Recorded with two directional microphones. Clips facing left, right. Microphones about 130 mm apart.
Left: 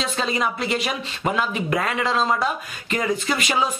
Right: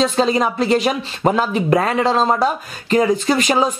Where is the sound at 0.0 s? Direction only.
35° right (ahead or behind).